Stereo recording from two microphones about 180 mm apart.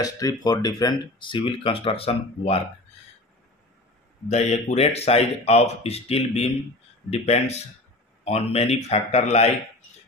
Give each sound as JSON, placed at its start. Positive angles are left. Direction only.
{"t": 0.0, "sound": "speech", "side_deg": 20}
{"t": 4.3, "sound": "speech", "side_deg": 40}